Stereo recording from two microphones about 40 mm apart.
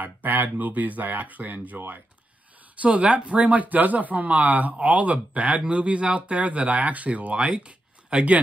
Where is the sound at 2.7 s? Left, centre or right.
Right.